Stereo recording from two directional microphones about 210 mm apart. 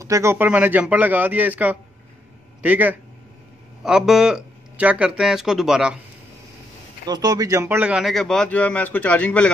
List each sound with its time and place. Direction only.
0.0 s a man's voice: 15° right (ahead or behind)
7.1 s a man's voice: 20° right (ahead or behind); by 9.5 s 5° left (ahead or behind)